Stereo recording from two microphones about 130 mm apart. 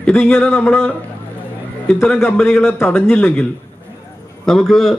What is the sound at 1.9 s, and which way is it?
A man's voice, 15° left (ahead or behind).